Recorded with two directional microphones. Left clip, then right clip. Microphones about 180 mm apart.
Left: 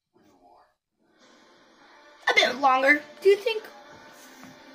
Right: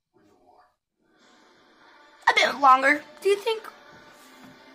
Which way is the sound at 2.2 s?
20° right (ahead or behind).